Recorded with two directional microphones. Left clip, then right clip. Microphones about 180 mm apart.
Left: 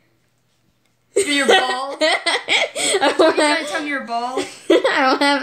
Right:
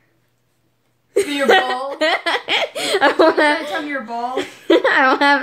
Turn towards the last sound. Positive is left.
turn(degrees=10)  # may be behind; listen again after turning